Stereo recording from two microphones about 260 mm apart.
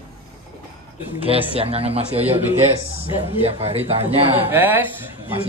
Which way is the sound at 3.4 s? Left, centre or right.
Right.